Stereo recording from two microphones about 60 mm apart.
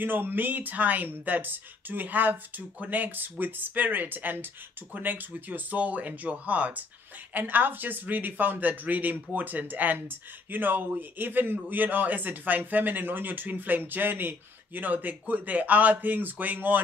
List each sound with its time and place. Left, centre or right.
0.0 s speech: right